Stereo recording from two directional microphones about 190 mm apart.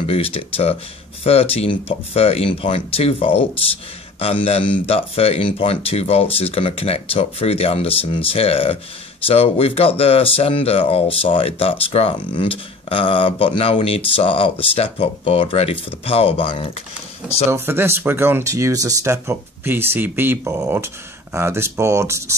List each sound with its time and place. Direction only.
0.0 s speech: 30° left (ahead or behind)
17.5 s speech: 10° right (ahead or behind)